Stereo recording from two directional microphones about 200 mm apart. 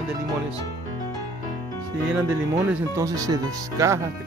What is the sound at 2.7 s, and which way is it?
Speech, 15° right (ahead or behind).